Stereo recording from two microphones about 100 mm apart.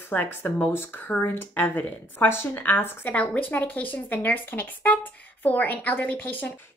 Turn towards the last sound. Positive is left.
turn(degrees=20)  # may be behind; listen again after turning